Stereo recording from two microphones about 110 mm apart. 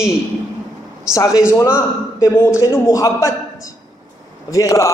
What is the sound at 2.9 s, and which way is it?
A man's voice, 30° left (ahead or behind).